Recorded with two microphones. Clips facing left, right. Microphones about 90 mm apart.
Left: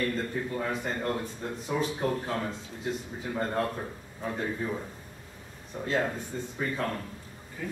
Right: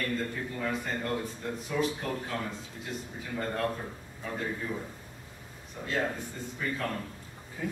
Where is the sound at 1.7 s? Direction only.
35° left (ahead or behind).